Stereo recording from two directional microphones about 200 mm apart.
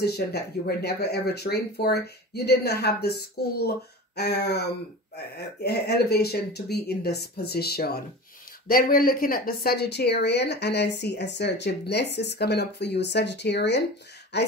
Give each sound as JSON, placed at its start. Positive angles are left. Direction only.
{"t": 0.0, "sound": "speech", "side_deg": 55}